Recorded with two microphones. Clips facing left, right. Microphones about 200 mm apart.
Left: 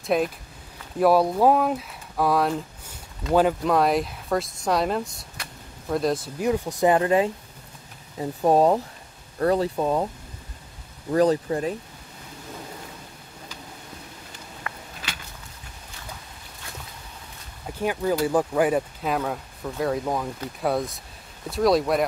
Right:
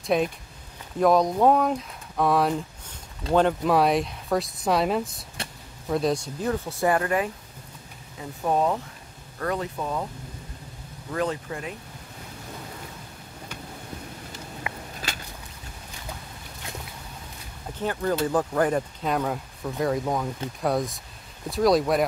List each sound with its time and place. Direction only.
0.0 s speech: centre (ahead or behind)
6.4 s speech: 15° left (ahead or behind)
8.2 s speech: 35° left (ahead or behind)
11.1 s speech: 35° left (ahead or behind)
14.7 s a sound: 15° right (ahead or behind)
17.7 s speech: 10° left (ahead or behind)